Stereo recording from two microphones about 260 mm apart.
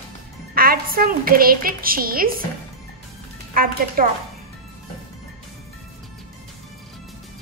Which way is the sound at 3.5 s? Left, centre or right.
Right.